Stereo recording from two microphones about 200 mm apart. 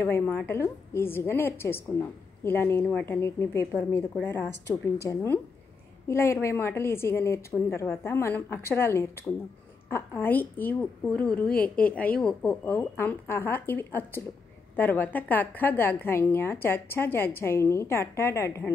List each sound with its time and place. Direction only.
0.0 s a woman's voice: 10° left (ahead or behind)